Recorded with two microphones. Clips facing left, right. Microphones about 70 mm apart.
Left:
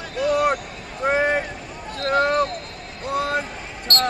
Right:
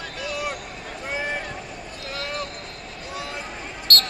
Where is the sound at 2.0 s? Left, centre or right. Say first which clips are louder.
Left 13 dB; left.